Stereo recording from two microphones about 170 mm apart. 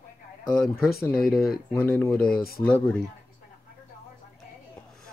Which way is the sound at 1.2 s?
60° left (ahead or behind).